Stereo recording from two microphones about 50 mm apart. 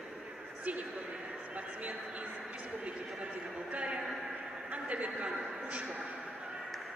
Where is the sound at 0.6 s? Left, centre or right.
Right.